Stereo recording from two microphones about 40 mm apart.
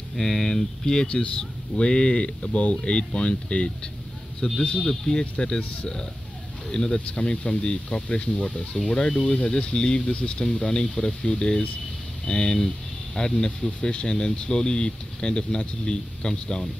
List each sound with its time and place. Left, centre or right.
0.2 s speech: centre
1.0 s speech: left
4.4 s speech: centre
6.7 s speech: centre